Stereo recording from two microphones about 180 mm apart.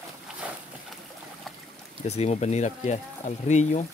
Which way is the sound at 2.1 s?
35° left (ahead or behind).